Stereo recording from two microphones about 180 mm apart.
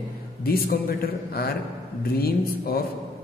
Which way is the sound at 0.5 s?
55° left (ahead or behind).